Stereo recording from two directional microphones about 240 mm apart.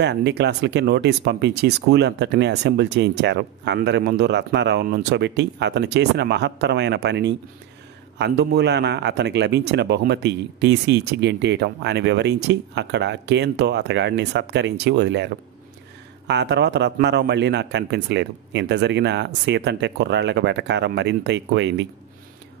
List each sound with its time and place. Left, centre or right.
0.0 s speech: right